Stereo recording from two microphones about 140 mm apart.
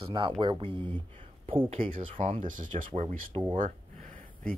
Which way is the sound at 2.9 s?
40° right (ahead or behind).